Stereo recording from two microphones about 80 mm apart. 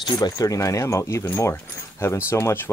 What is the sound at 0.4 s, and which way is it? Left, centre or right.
Speech, left.